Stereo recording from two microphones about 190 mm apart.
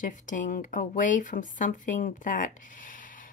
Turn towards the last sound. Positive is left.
turn(degrees=45)  # may be behind; listen again after turning